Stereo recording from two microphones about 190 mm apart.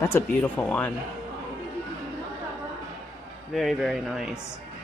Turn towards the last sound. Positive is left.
turn(degrees=-5)  # may be behind; listen again after turning